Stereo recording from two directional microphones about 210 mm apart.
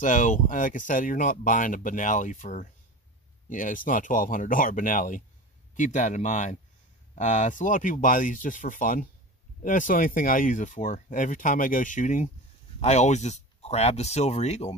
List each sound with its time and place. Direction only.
0.0 s speech: 35° left (ahead or behind)